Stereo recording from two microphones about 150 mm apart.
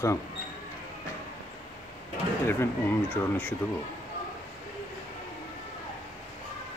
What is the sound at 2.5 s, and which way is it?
Speech, 15° left (ahead or behind).